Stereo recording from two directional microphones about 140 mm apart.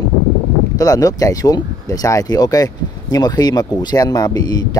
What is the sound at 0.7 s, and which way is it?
Speech, 25° left (ahead or behind).